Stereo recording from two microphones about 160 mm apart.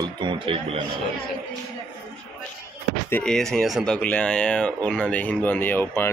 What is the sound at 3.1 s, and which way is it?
Speech, 5° left (ahead or behind).